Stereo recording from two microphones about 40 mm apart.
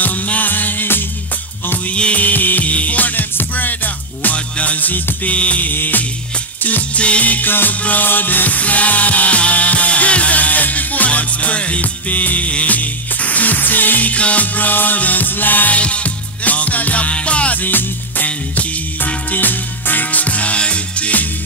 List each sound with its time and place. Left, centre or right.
0.0 s music: left
2.1 s music: left
2.7 s music: left
5.3 s music: left
5.7 s music: left
7.0 s music: left
15.7 s music: left
17.6 s music: left